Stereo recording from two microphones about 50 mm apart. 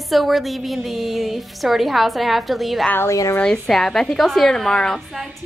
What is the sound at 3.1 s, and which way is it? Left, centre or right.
Speech, left.